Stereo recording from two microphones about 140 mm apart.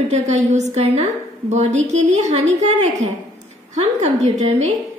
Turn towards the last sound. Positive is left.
turn(degrees=-55)  # may be behind; listen again after turning